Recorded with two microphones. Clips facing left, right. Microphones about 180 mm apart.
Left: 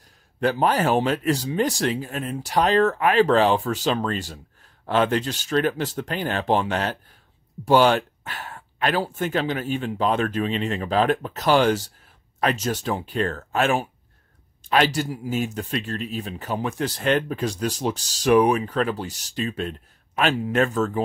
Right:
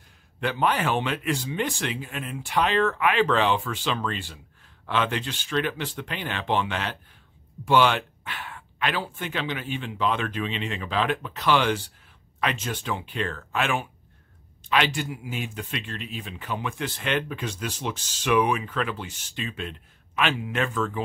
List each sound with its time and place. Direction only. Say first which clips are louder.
0.4 s speech: left 4 dB; 40° left (ahead or behind)